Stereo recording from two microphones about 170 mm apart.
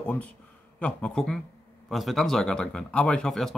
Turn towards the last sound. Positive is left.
turn(degrees=5)  # may be behind; listen again after turning